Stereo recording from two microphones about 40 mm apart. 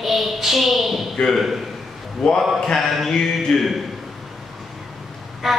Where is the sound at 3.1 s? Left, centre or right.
Centre.